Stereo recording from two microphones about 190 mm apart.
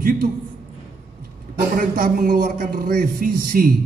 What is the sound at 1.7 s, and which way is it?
A man's voice, 45° right (ahead or behind).